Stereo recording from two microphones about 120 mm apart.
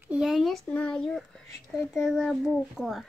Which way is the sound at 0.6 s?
10° left (ahead or behind).